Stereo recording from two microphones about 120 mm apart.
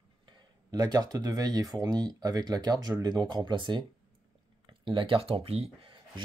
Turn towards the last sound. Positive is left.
turn(degrees=-55)  # may be behind; listen again after turning